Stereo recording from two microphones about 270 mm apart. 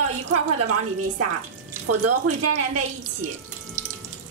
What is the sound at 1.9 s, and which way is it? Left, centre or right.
A woman's voice, right.